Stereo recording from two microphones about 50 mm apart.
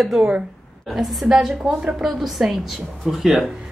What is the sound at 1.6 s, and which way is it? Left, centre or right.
Speech, centre.